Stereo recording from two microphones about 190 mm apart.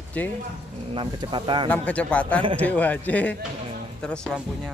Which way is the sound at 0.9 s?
25° right (ahead or behind).